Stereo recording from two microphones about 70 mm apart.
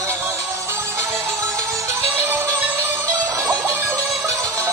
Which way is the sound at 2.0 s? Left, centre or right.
Right.